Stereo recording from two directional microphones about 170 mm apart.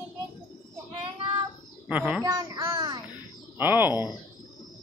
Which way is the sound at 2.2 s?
20° right (ahead or behind).